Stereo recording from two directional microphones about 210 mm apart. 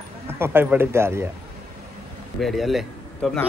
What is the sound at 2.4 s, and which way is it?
A man's voice, centre (ahead or behind).